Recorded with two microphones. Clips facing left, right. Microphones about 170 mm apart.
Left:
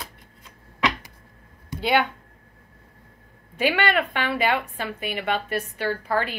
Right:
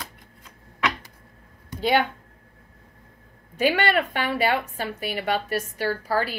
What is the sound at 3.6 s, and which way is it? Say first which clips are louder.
A woman's voice: right 1 dB; 40° right (ahead or behind).